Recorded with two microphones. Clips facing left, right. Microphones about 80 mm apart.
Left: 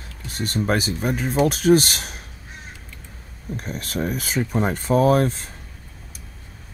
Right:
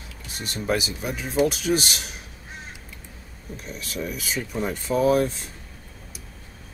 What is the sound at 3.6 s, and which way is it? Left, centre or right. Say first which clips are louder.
Speech: left 5 dB; left.